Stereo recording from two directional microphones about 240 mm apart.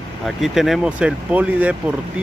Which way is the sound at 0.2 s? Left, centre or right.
Centre.